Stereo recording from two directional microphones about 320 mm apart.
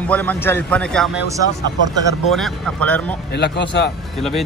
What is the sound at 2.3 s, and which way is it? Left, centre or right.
Speech, centre.